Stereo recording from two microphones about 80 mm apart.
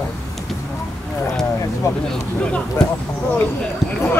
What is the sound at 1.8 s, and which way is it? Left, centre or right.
Speech, left.